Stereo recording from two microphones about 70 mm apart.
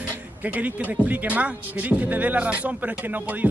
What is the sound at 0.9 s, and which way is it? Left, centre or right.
Speech, right.